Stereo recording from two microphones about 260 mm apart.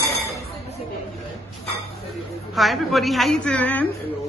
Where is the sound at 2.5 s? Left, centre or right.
Centre.